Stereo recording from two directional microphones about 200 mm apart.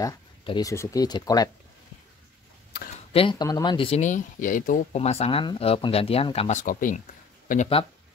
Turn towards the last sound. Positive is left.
turn(degrees=45)  # may be behind; listen again after turning